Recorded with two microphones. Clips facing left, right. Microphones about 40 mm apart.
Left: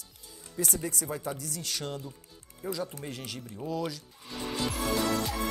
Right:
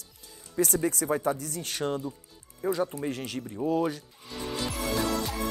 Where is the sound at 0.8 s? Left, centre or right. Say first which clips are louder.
Right 7 dB; right.